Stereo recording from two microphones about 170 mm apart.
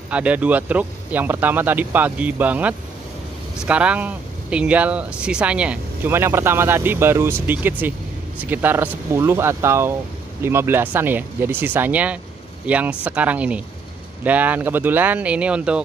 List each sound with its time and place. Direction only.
0.1 s speech: 5° right (ahead or behind)